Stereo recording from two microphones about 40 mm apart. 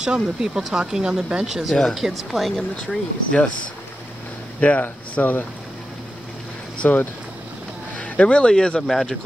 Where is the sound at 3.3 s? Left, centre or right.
Left.